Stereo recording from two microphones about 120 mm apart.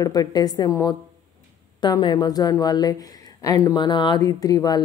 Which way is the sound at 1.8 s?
40° left (ahead or behind).